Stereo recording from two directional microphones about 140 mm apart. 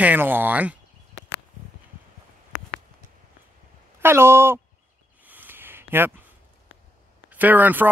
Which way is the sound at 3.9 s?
15° right (ahead or behind).